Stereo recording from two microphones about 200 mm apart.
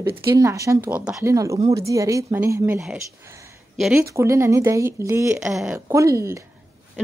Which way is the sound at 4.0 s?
15° right (ahead or behind).